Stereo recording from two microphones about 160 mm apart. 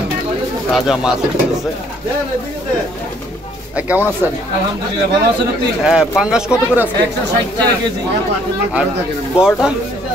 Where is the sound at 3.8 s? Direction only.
10° right (ahead or behind).